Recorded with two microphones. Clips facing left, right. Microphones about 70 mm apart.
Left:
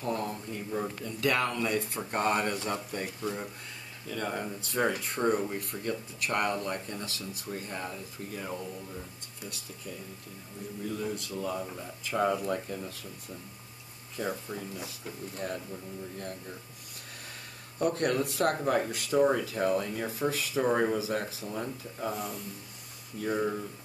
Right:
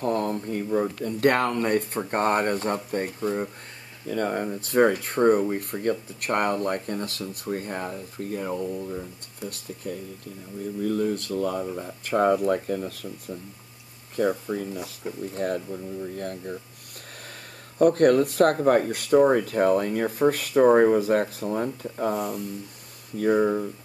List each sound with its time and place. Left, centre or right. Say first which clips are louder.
0.0 s speech: right 8 dB; right
3.2 s speech: right 8 dB; right
4.1 s speech: right 8 dB; right
9.4 s speech: right 9 dB; right
14.5 s speech: right 8 dB; right
17.7 s speech: right 10 dB; right
23.4 s speech: right 8 dB; right